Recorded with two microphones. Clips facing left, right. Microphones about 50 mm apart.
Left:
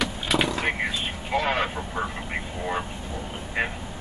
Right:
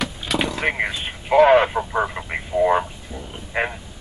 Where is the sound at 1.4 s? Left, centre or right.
Right.